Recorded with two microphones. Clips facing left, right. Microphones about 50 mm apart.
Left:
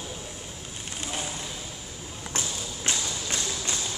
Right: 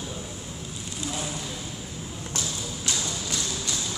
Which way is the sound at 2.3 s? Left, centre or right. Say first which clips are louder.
Even; left.